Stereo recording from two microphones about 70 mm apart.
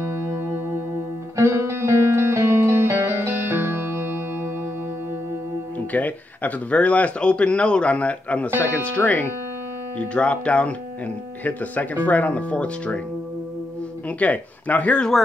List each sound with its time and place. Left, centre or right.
0.0 s music: right
5.9 s speech: left
14.0 s speech: left